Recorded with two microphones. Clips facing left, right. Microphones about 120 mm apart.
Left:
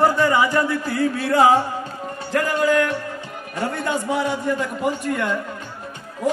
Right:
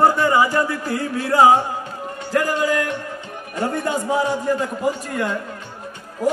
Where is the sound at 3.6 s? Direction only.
40° right (ahead or behind).